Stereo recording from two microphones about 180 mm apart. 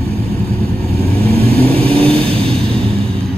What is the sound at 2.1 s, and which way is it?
Vehicle, 30° right (ahead or behind).